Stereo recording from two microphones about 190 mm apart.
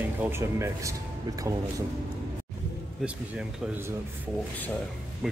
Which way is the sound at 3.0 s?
5° right (ahead or behind).